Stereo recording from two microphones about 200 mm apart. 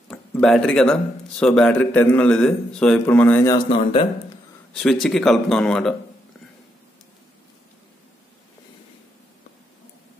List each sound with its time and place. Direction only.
0.1 s a man's voice: 5° left (ahead or behind)
3.7 s speech: 30° left (ahead or behind)
4.7 s speech: centre (ahead or behind)